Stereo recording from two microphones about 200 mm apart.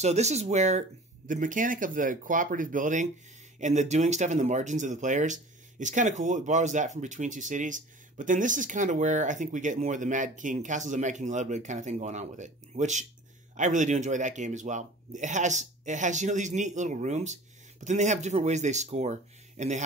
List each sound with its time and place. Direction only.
0.0 s speech: 35° right (ahead or behind)